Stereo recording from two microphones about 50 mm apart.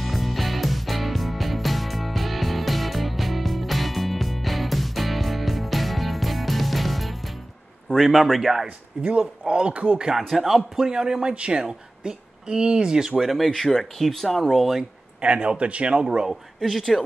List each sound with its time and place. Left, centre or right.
0.0 s music: centre
8.0 s speech: centre
8.6 s speech: right
10.0 s speech: centre
13.5 s speech: centre
14.8 s speech: right
16.5 s speech: centre